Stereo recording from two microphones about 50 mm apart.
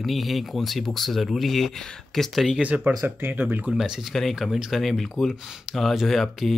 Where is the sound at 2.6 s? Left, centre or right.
Right.